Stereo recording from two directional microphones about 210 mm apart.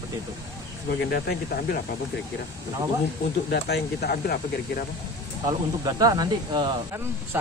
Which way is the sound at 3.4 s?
50° left (ahead or behind).